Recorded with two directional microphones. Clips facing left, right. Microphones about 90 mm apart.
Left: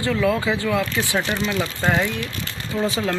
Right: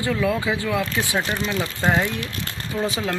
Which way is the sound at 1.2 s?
Centre (ahead or behind).